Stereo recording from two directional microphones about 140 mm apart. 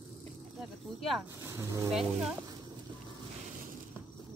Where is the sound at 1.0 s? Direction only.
Centre (ahead or behind).